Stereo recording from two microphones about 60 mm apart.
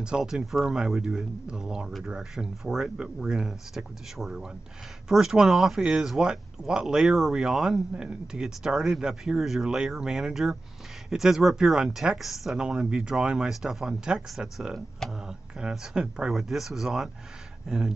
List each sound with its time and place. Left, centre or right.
0.2 s speech: centre